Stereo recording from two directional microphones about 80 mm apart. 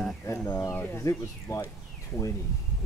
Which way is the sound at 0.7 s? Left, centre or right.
Left.